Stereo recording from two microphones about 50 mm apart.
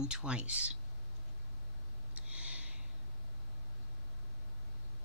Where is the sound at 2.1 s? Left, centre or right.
Right.